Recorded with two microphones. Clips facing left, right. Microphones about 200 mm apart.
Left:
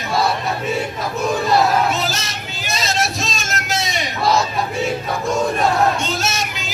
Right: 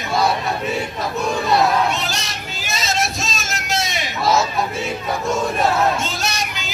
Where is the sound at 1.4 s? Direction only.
Centre (ahead or behind).